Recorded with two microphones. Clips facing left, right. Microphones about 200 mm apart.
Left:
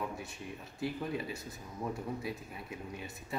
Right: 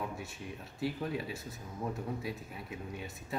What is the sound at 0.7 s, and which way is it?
Speech, centre (ahead or behind).